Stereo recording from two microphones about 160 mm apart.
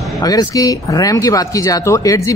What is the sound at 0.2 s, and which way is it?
Speech, 25° left (ahead or behind).